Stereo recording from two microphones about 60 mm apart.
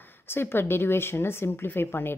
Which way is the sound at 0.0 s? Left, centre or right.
Left.